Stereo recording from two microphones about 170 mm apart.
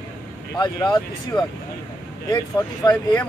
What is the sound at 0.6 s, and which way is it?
Speech, 25° left (ahead or behind).